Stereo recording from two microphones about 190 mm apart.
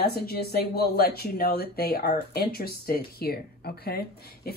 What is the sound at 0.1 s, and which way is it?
Speech, 55° left (ahead or behind).